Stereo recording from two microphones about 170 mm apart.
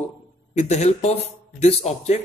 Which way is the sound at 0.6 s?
40° left (ahead or behind).